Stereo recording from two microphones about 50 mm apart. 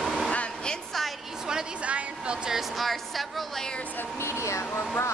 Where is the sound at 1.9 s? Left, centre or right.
Right.